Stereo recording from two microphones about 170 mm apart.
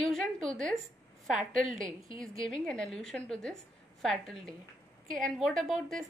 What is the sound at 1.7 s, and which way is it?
Speech, 50° right (ahead or behind).